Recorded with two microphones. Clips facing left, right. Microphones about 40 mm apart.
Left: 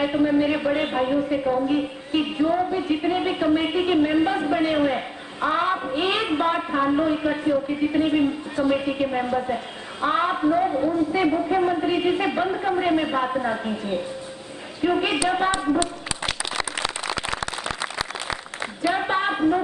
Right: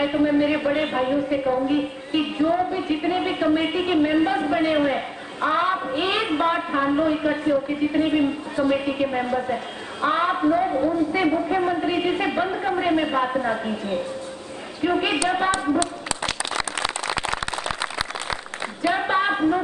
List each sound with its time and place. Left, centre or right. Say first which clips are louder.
0.0 s speech: even; centre
14.8 s speech: even; centre
18.8 s a sound: right 1 dB; centre